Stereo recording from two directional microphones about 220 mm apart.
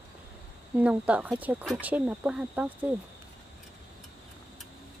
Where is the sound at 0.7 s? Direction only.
5° right (ahead or behind).